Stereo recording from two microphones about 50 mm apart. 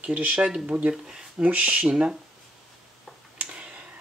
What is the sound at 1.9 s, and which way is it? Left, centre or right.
Speech, centre.